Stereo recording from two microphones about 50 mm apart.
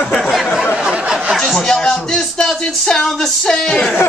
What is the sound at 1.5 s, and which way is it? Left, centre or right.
Speech, centre.